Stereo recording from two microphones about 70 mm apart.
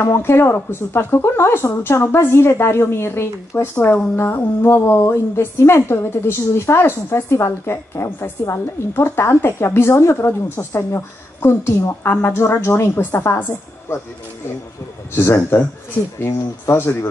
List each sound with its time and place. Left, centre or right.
0.0 s speech: left
3.7 s speech: left
15.1 s a man's voice: left